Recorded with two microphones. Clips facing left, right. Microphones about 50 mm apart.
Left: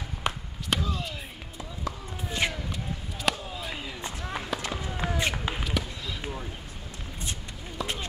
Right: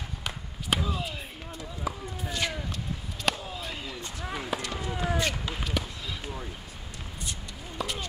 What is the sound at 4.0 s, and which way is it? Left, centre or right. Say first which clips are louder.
Run: left 2 dB; left.